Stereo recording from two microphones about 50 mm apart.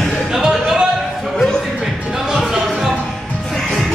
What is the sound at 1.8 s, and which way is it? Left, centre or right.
Music, centre.